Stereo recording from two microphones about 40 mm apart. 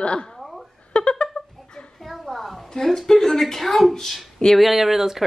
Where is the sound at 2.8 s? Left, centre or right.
Centre.